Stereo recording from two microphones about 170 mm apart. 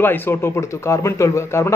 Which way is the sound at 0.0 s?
10° left (ahead or behind).